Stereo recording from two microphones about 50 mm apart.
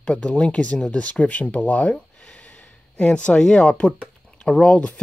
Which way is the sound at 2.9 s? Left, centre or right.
Left.